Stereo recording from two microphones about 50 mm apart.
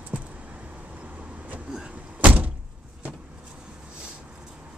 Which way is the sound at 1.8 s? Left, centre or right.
Right.